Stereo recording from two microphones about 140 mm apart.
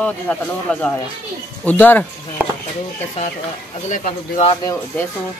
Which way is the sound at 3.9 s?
65° left (ahead or behind).